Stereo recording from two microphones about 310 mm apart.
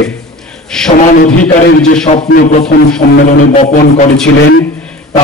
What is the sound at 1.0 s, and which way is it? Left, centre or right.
A man's voice, left.